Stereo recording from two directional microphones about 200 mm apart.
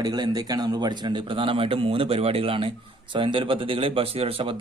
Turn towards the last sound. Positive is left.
turn(degrees=-25)  # may be behind; listen again after turning